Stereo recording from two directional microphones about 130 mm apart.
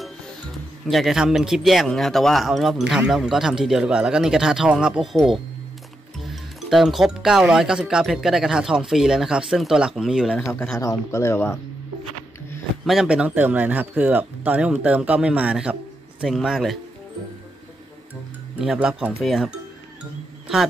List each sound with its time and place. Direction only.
0.8 s speech: centre (ahead or behind)
10.8 s speech: 25° left (ahead or behind)
12.8 s speech: 5° right (ahead or behind)
18.6 s speech: 5° right (ahead or behind)